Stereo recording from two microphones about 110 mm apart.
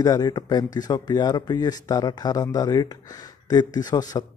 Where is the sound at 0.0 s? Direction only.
35° left (ahead or behind).